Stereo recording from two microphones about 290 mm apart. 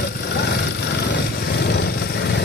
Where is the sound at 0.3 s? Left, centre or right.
Left.